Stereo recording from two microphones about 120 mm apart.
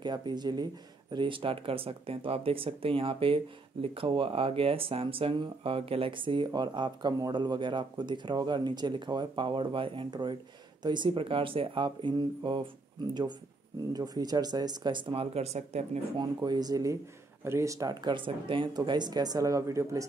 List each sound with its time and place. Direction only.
0.0 s speech: 35° right (ahead or behind)
13.9 s speech: 30° right (ahead or behind)
15.3 s speech: 65° right (ahead or behind)
16.2 s speech: 40° right (ahead or behind)
18.1 s speech: 45° right (ahead or behind); by 20.1 s 25° right (ahead or behind)